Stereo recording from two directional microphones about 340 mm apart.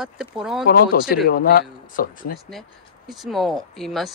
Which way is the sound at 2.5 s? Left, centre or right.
Centre.